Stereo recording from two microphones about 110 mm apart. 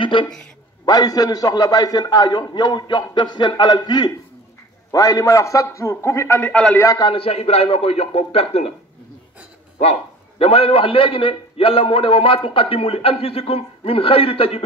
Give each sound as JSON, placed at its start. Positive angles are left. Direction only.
{"t": 0.0, "sound": "a man's voice", "side_deg": 50}
{"t": 0.8, "sound": "a man's voice", "side_deg": 35}
{"t": 6.5, "sound": "a man's voice", "side_deg": 10}
{"t": 7.0, "sound": "a man's voice", "side_deg": 55}
{"t": 10.4, "sound": "a man's voice", "side_deg": 60}